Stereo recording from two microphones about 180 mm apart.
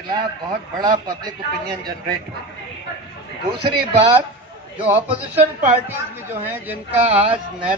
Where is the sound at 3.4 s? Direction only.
60° right (ahead or behind).